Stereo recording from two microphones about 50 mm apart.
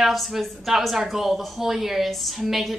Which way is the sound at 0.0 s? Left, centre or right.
Centre.